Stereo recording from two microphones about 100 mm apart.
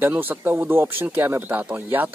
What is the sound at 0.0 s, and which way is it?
Speech, 20° right (ahead or behind).